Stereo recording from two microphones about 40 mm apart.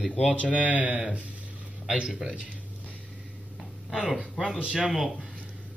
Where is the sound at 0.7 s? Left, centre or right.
Right.